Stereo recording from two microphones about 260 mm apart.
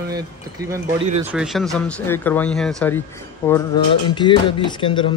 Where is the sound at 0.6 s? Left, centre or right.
Centre.